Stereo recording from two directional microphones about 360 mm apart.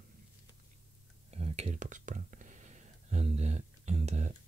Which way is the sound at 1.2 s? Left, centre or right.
Centre.